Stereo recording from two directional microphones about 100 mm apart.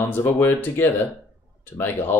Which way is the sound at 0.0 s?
20° left (ahead or behind).